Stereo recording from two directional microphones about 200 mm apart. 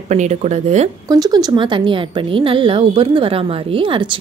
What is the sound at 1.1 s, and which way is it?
Speech, 20° right (ahead or behind).